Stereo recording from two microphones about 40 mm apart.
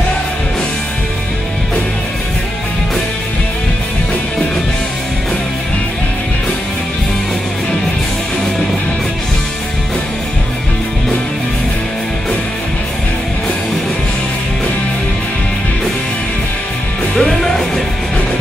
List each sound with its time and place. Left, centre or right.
17.1 s music: centre